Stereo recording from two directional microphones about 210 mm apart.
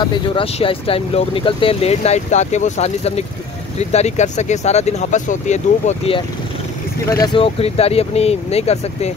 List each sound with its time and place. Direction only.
0.0 s speech: 20° left (ahead or behind)